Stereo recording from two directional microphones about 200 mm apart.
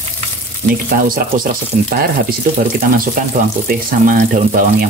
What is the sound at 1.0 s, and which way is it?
Speech, 45° right (ahead or behind).